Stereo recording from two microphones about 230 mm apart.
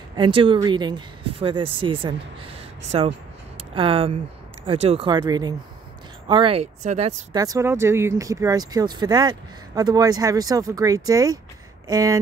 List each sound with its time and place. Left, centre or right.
0.1 s speech: right
7.3 s speech: centre